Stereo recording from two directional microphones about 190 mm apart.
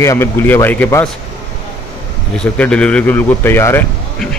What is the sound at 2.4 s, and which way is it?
Speech, 5° left (ahead or behind).